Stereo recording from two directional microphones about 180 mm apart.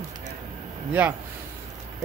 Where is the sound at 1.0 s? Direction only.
10° right (ahead or behind).